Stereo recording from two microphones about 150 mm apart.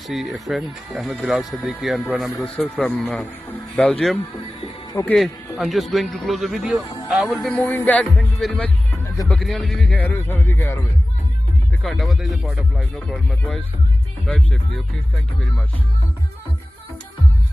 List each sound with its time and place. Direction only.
0.1 s speech: centre (ahead or behind)
4.9 s speech: 20° left (ahead or behind)
5.6 s speech: centre (ahead or behind)
11.8 s speech: centre (ahead or behind)